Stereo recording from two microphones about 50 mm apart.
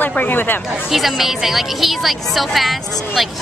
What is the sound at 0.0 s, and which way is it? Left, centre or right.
Speech, left.